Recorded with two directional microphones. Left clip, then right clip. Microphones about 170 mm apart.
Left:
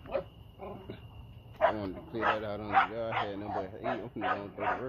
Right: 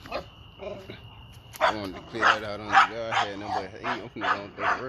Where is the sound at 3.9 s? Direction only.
15° left (ahead or behind).